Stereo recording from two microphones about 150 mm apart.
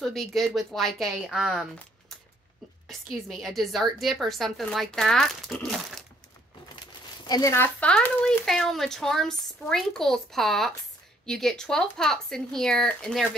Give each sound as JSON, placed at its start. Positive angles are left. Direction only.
{"t": 0.0, "sound": "a woman's voice", "side_deg": 0}
{"t": 7.2, "sound": "a woman's voice", "side_deg": 25}